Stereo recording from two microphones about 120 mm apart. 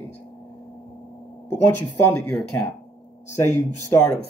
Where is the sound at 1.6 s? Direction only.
15° left (ahead or behind).